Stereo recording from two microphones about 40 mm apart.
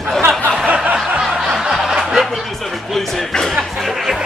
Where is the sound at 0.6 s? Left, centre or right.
Right.